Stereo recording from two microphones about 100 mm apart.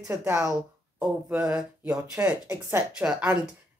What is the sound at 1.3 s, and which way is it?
Speech, 15° right (ahead or behind).